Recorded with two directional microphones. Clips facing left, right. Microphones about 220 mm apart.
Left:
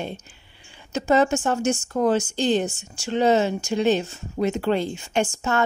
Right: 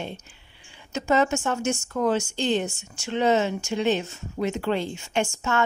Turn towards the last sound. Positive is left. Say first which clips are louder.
# left 2 dB
turn(degrees=35)  # may be behind; listen again after turning